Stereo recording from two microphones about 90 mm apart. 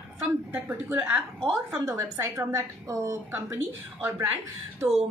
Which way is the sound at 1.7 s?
35° right (ahead or behind).